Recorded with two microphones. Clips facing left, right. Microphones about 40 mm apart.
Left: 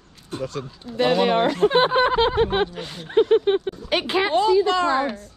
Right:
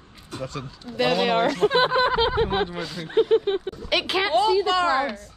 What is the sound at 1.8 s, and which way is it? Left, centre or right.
Speech, left.